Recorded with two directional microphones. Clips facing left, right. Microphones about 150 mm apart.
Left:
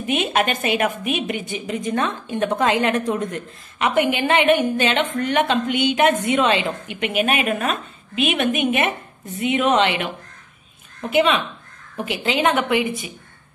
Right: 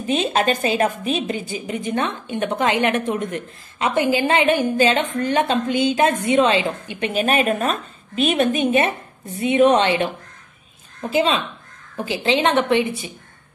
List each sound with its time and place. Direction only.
0.0 s a woman's voice: 30° right (ahead or behind)
11.1 s a woman's voice: 30° right (ahead or behind)